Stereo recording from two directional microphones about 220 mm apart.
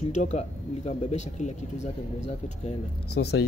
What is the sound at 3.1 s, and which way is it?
Speech, 50° left (ahead or behind).